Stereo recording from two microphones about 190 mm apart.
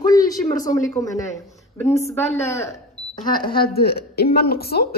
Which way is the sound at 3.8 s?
55° left (ahead or behind).